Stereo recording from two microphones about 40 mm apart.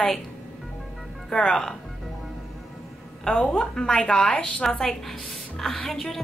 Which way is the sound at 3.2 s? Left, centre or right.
Centre.